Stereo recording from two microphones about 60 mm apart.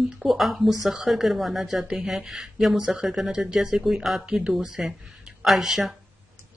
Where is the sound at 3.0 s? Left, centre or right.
Centre.